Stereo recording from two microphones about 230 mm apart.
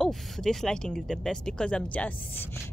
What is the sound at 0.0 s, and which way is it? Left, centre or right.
A woman's voice, centre.